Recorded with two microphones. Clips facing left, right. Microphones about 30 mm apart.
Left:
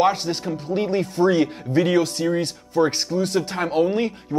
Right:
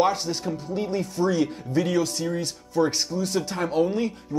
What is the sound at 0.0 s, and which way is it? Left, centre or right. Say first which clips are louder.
Speech: left 3 dB; left.